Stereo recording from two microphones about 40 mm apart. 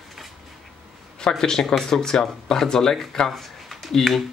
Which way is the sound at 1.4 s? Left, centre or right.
Centre.